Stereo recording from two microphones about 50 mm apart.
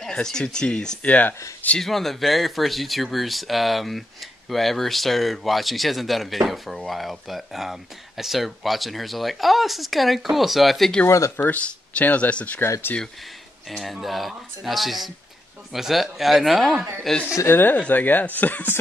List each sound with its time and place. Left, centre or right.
0.0 s speech: centre
1.0 s speech: left
1.8 s speech: centre
11.1 s speech: left
11.3 s speech: left
13.7 s speech: centre
17.5 s speech: left